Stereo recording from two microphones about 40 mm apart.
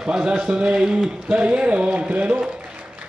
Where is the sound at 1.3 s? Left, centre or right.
Right.